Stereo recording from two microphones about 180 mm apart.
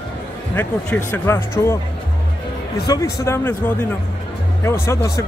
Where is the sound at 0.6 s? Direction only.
10° left (ahead or behind).